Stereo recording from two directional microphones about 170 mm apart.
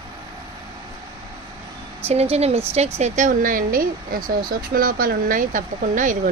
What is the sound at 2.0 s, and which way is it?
Speech, 35° right (ahead or behind).